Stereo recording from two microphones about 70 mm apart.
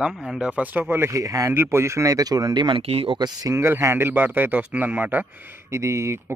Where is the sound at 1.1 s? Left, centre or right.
Right.